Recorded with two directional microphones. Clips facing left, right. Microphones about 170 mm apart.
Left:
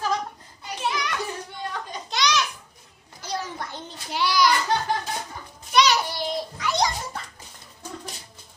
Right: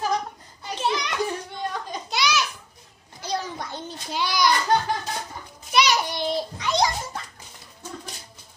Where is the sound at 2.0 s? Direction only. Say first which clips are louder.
Left 1 dB; 5° right (ahead or behind).